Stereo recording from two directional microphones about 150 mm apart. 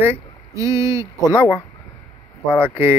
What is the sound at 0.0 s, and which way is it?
Speech, 20° right (ahead or behind).